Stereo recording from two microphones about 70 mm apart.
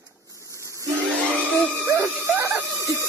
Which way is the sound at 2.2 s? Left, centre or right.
Right.